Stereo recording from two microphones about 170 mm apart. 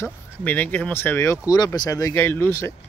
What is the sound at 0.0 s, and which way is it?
Speech, 10° left (ahead or behind).